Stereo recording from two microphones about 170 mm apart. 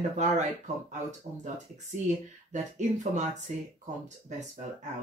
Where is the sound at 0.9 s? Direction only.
45° right (ahead or behind).